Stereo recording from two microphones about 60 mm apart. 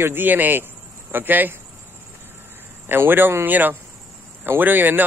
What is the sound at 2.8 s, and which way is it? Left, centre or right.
A man's voice, right.